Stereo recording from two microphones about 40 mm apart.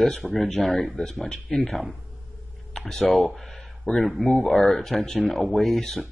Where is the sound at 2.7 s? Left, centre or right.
Centre.